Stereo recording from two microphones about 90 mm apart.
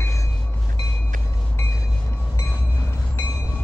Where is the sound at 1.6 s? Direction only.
30° left (ahead or behind).